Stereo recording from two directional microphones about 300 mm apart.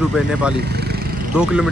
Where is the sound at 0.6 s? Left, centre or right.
Right.